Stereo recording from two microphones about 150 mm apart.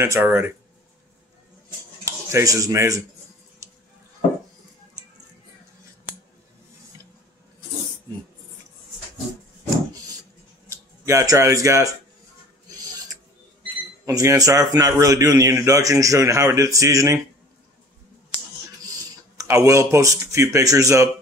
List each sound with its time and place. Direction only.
0.0 s speech: 15° right (ahead or behind)
2.0 s speech: 20° right (ahead or behind)
10.7 s speech: 20° right (ahead or behind)
14.0 s a man's voice: 20° right (ahead or behind)
19.3 s a man's voice: 20° right (ahead or behind)